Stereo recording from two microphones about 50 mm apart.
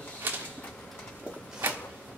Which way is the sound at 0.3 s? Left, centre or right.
Right.